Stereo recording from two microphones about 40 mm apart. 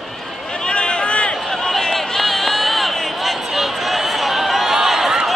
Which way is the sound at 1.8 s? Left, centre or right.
Centre.